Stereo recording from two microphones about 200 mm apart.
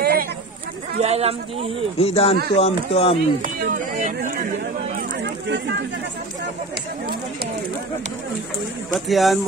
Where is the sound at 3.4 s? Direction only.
45° right (ahead or behind).